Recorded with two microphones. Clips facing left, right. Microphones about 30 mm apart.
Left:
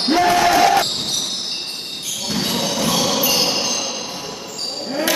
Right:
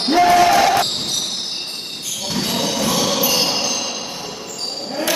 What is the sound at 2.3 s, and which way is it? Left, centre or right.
Music, centre.